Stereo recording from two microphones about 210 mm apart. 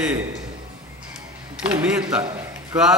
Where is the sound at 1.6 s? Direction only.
5° right (ahead or behind).